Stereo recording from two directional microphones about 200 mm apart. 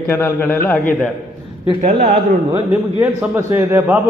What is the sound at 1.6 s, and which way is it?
A man's voice, 35° right (ahead or behind).